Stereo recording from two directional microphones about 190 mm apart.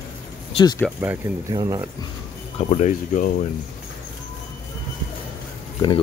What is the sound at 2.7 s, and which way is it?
Speech, 40° left (ahead or behind).